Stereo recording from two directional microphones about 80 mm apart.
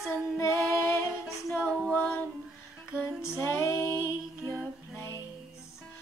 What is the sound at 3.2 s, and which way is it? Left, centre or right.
Music, left.